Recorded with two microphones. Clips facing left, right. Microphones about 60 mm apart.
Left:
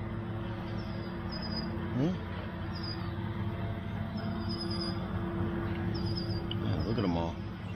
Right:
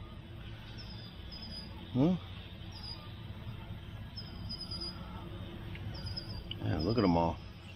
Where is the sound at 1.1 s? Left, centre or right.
Left.